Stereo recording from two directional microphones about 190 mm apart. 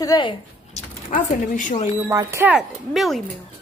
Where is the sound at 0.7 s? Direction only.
45° left (ahead or behind).